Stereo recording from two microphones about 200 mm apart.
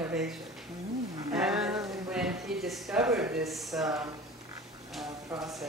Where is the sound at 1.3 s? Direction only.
5° right (ahead or behind).